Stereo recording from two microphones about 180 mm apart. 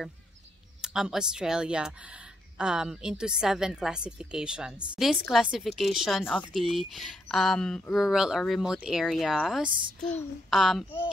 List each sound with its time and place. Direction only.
0.8 s speech: 5° right (ahead or behind)